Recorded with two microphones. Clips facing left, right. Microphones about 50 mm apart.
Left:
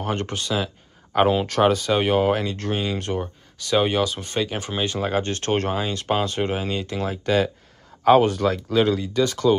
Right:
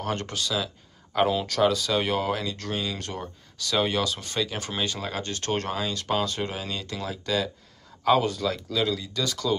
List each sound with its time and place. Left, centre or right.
0.0 s speech: left
4.9 s speech: left
8.0 s speech: left
8.3 s speech: left